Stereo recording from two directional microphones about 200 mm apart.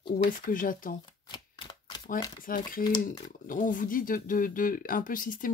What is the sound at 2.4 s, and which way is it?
Speech, 45° left (ahead or behind).